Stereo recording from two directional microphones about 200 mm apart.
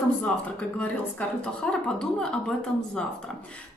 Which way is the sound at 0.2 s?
5° left (ahead or behind).